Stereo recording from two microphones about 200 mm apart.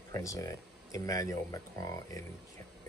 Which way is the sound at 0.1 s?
15° left (ahead or behind).